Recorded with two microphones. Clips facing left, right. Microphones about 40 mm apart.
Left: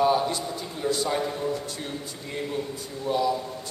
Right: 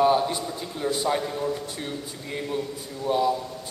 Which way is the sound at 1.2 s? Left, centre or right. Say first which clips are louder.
Even; centre.